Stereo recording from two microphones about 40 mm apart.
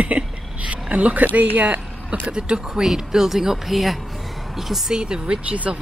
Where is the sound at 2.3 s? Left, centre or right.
Right.